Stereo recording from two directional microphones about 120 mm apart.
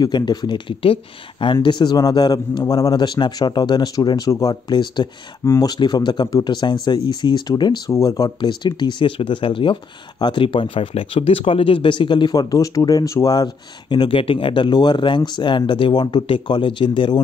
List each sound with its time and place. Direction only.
0.0 s speech: 35° left (ahead or behind)
5.4 s speech: 30° left (ahead or behind); by 17.2 s 45° left (ahead or behind)